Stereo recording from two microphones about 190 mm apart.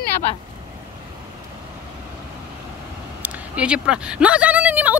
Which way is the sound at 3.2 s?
5° right (ahead or behind).